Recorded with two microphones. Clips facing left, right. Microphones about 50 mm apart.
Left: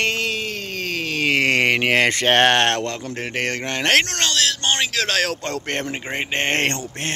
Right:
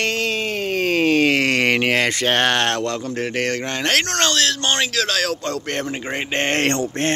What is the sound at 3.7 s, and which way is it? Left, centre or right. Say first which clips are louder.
Speech: left 5 dB; left.